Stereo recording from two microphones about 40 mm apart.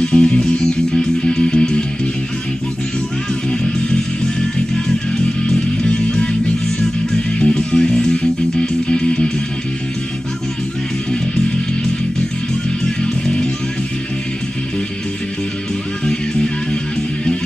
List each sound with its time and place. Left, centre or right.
0.0 s music: left
3.4 s music: centre
6.8 s music: centre
8.2 s music: left
11.1 s music: centre
13.0 s music: centre